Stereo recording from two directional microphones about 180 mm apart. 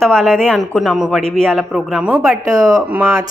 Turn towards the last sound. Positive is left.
turn(degrees=-15)  # may be behind; listen again after turning